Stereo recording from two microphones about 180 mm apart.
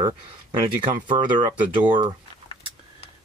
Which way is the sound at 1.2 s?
25° right (ahead or behind).